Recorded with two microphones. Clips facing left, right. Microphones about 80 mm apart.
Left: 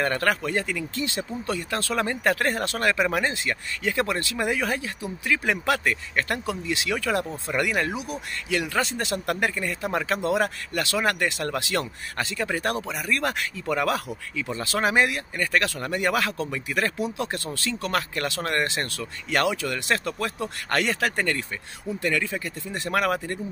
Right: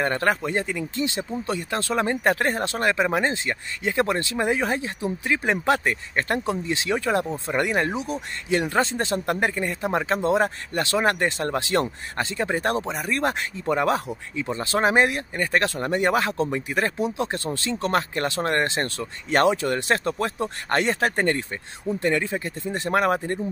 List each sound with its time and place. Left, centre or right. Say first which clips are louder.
0.0 s speech: right 1 dB; right